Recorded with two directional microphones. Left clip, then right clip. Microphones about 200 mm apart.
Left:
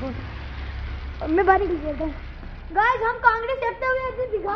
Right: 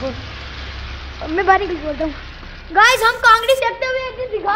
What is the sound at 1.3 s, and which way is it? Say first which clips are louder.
Speech: right 4 dB; 20° left (ahead or behind).